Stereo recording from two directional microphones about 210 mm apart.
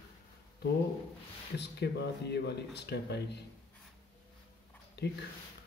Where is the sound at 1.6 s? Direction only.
55° left (ahead or behind).